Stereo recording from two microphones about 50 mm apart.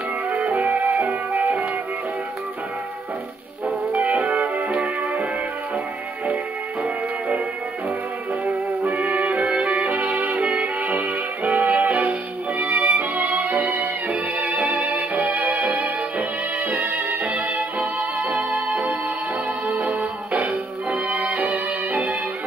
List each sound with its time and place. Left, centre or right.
0.5 s music: right
3.9 s music: right
6.8 s music: right
8.9 s music: centre; by 11.9 s right
11.9 s music: centre
12.8 s music: right
15.6 s music: centre
16.9 s music: right
21.1 s music: right
21.5 s music: centre